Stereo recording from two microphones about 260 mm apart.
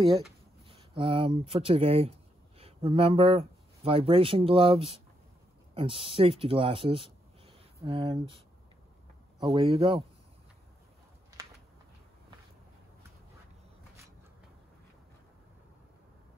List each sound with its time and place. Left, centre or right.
0.7 s speech: right
9.4 s speech: right